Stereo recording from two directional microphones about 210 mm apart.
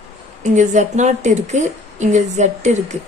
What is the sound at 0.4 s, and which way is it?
A woman's voice, 35° right (ahead or behind).